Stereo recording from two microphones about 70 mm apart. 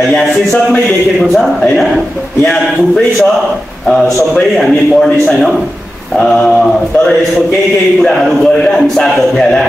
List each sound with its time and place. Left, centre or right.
0.1 s speech: centre
4.4 s speech: centre
8.0 s speech: centre